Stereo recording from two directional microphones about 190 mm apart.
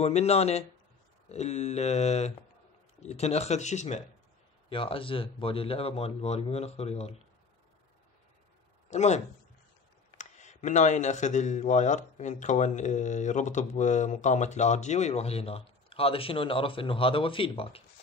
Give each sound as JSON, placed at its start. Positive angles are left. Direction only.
{"t": 0.0, "sound": "speech", "side_deg": 35}
{"t": 8.9, "sound": "speech", "side_deg": 35}